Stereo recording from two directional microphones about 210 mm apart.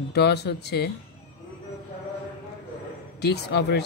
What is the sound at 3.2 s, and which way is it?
Speech, 50° left (ahead or behind).